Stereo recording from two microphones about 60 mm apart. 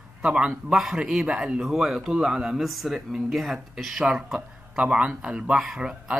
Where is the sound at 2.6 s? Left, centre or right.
Centre.